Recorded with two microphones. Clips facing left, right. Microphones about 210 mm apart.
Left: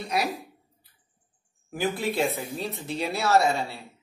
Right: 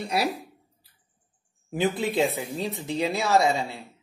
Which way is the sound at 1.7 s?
20° right (ahead or behind).